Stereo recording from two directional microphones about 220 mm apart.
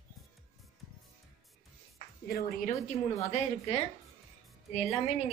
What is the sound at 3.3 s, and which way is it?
Speech, 25° left (ahead or behind).